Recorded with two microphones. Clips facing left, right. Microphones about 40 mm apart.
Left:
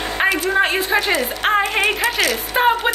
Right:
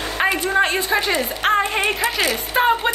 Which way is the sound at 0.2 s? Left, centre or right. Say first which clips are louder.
Left 1 dB; centre.